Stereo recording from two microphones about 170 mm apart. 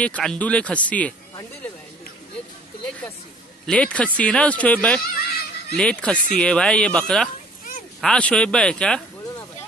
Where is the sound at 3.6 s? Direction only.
5° left (ahead or behind).